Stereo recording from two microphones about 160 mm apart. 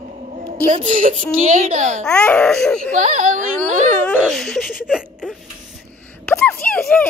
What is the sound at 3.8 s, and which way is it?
Speech, 5° left (ahead or behind).